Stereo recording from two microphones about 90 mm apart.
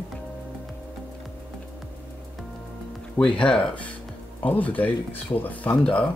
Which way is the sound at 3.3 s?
10° left (ahead or behind).